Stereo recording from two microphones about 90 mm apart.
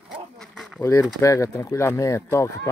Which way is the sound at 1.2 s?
35° left (ahead or behind).